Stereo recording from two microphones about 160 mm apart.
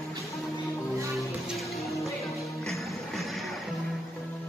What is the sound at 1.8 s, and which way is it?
Music, 20° left (ahead or behind).